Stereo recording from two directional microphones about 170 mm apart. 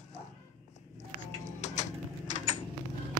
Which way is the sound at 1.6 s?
45° left (ahead or behind).